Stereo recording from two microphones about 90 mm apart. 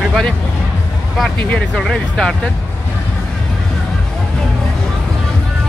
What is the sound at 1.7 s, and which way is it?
Speech, centre (ahead or behind).